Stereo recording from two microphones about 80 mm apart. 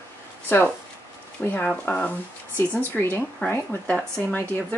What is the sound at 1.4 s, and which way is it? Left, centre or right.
Speech, left.